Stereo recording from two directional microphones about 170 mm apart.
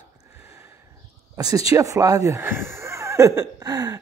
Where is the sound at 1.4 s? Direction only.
20° right (ahead or behind).